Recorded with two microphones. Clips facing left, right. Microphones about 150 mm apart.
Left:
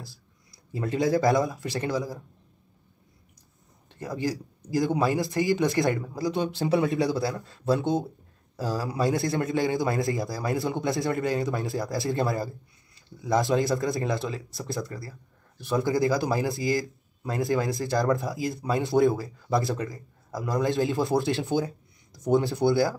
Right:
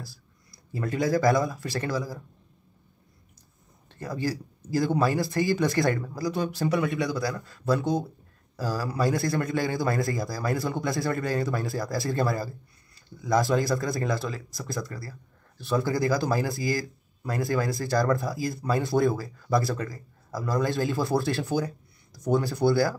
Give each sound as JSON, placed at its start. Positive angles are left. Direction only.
{"t": 0.7, "sound": "speech", "side_deg": 20}
{"t": 3.9, "sound": "speech", "side_deg": 20}